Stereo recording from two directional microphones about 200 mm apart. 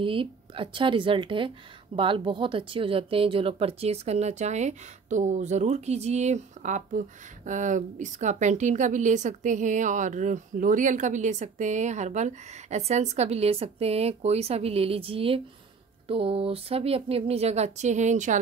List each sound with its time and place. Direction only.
0.0 s a woman's voice: 25° right (ahead or behind)